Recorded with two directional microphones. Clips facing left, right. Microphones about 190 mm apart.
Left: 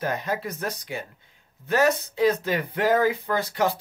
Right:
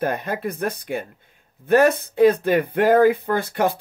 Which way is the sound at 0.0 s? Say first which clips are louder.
Right 4 dB; 55° right (ahead or behind).